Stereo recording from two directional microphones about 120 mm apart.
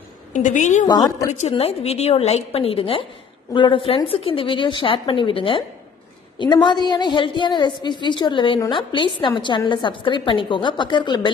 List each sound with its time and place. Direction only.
0.3 s a woman's voice: 90° left
0.8 s a woman's voice: 30° left (ahead or behind)
1.5 s a woman's voice: 55° left (ahead or behind); by 11.3 s 40° left (ahead or behind)